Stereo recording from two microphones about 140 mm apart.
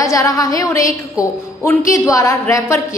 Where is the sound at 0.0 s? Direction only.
20° left (ahead or behind).